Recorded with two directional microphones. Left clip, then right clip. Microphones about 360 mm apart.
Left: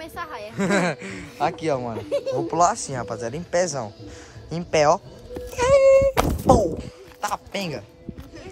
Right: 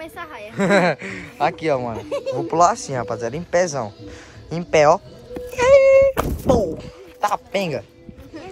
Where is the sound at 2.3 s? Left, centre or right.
Centre.